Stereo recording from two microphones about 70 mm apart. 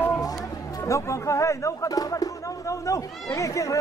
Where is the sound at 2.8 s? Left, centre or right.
Left.